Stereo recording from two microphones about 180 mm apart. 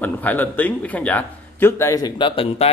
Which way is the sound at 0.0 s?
10° left (ahead or behind).